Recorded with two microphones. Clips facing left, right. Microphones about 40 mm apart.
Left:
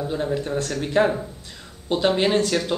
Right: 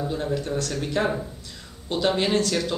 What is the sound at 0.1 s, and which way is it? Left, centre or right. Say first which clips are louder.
A man's voice: left 2 dB; left.